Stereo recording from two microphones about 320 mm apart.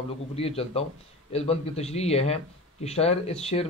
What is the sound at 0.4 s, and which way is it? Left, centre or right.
A man's voice, centre.